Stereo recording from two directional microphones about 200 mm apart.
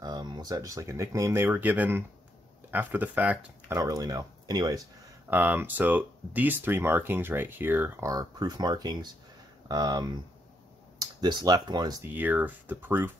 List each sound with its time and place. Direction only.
0.0 s speech: 20° right (ahead or behind)